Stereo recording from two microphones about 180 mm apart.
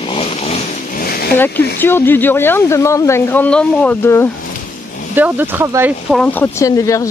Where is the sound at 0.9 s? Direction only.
55° left (ahead or behind).